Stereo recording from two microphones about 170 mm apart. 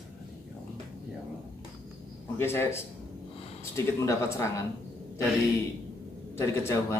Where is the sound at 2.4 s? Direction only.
15° left (ahead or behind).